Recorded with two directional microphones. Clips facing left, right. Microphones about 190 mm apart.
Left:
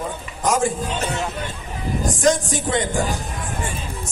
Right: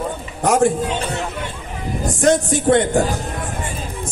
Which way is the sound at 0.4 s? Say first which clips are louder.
Right 4 dB; 65° right (ahead or behind).